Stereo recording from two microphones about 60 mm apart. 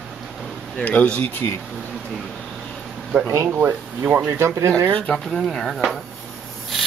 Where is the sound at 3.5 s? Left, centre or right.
Right.